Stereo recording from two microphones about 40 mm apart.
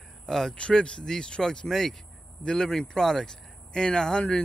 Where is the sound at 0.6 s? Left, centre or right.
Left.